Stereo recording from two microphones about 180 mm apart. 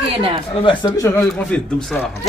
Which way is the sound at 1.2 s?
5° left (ahead or behind).